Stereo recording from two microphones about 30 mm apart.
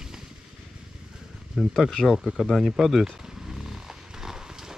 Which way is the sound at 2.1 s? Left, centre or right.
Centre.